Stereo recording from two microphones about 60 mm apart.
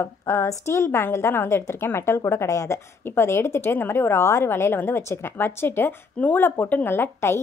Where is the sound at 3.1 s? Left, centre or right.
Left.